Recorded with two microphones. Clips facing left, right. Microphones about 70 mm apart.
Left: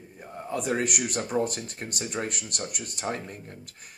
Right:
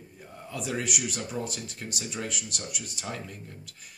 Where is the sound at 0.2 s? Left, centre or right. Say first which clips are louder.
Left 6 dB; left.